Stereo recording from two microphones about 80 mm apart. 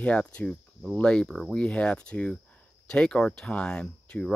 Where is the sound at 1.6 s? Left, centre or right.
Centre.